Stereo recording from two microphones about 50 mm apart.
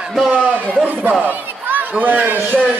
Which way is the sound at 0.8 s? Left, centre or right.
Right.